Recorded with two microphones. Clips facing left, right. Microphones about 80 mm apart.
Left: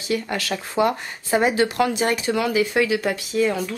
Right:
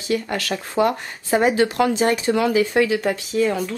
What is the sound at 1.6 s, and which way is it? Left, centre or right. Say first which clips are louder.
Speech: right 2 dB; right.